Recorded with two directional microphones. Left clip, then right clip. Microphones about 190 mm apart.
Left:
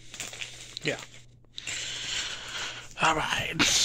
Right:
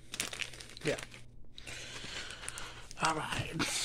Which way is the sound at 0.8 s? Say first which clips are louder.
Left 4 dB; 10° left (ahead or behind).